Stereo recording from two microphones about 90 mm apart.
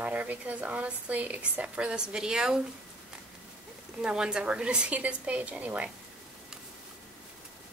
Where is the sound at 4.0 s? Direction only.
10° right (ahead or behind).